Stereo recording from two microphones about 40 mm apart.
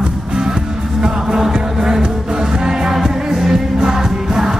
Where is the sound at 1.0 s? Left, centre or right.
Centre.